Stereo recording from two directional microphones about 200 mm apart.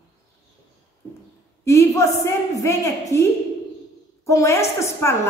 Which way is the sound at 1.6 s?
15° left (ahead or behind).